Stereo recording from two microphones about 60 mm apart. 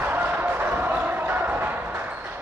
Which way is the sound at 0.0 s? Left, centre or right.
Right.